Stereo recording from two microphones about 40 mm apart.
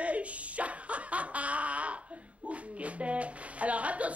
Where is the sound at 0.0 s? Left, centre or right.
Right.